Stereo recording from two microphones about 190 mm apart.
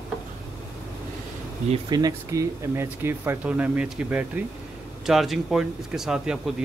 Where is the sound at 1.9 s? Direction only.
15° right (ahead or behind).